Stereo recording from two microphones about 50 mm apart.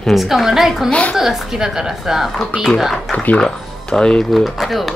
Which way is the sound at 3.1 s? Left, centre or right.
Left.